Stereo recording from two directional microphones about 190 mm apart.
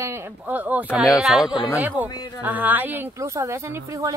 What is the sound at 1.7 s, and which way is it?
Speech, 10° right (ahead or behind).